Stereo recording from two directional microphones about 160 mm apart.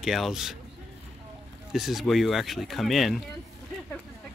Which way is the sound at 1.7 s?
Centre (ahead or behind).